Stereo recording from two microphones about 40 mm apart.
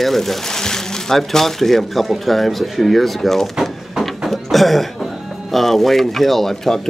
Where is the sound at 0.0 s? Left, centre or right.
Centre.